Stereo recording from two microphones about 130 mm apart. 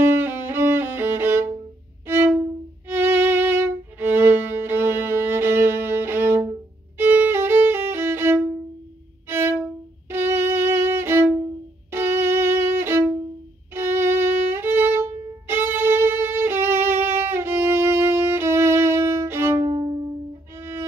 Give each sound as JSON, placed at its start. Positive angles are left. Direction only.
{"t": 0.0, "sound": "music", "side_deg": -15}
{"t": 2.0, "sound": "violin", "side_deg": -15}
{"t": 19.6, "sound": "violin", "side_deg": -40}
{"t": 20.5, "sound": "music", "side_deg": -20}